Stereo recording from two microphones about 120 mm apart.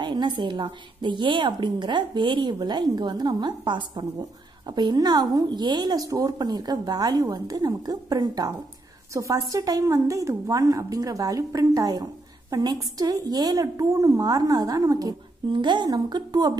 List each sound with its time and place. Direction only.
0.0 s a woman's voice: 40° right (ahead or behind)